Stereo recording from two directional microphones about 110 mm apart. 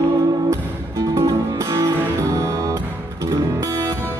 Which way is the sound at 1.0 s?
30° right (ahead or behind).